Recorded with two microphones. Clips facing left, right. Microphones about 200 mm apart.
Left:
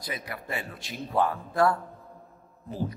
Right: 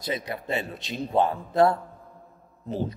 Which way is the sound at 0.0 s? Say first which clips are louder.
Right 6 dB; 25° right (ahead or behind).